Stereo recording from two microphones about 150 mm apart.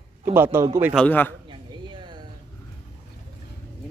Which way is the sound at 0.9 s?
10° left (ahead or behind).